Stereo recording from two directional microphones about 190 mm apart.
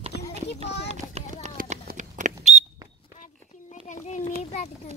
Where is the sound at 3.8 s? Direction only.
40° left (ahead or behind).